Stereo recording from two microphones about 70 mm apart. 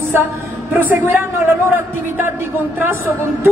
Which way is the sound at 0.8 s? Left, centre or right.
Right.